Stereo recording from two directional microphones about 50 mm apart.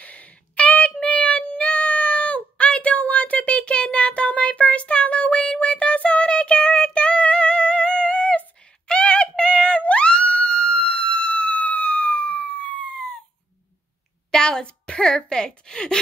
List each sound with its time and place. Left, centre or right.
0.0 s child singing: left
9.4 s music: left
14.3 s a woman's voice: centre